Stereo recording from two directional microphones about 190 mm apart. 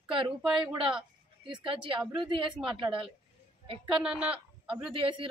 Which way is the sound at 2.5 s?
5° right (ahead or behind).